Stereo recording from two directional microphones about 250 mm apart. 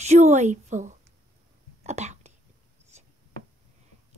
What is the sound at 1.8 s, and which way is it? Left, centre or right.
Whispering, right.